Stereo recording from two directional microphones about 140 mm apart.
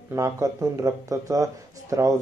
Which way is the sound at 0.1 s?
20° right (ahead or behind).